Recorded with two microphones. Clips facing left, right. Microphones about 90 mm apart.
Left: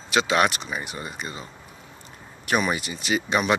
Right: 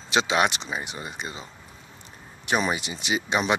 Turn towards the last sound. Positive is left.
turn(degrees=-20)  # may be behind; listen again after turning